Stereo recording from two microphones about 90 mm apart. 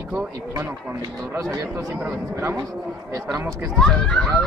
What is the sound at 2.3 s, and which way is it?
Speech, 30° right (ahead or behind).